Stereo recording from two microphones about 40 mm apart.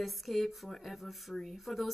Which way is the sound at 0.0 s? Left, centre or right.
Centre.